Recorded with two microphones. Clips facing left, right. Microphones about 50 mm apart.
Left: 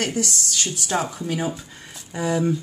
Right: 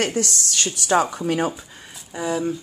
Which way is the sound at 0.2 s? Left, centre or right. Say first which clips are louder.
Right 1 dB; right.